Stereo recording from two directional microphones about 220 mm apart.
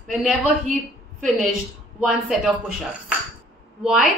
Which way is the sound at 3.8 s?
Centre (ahead or behind).